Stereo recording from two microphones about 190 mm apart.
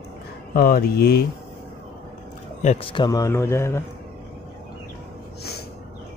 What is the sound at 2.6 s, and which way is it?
Speech, 35° left (ahead or behind).